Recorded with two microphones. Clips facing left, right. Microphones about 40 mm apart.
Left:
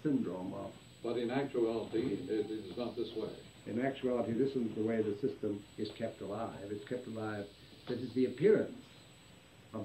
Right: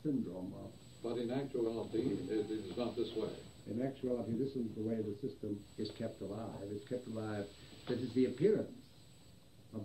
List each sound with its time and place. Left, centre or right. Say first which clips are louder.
0.0 s a sound: left 4 dB; left
1.0 s speech: left 3 dB; left
2.1 s a man's voice: left 1 dB; centre
3.6 s speech: left 4 dB; left
5.8 s speech: left 2 dB; left
7.1 s speech: left 2 dB; left
7.3 s speech: even; centre
8.5 s speech: left 9 dB; left
9.7 s pig: left 4 dB; left